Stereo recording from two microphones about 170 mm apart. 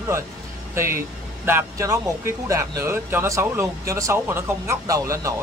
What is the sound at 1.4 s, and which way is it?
Speech, 15° right (ahead or behind).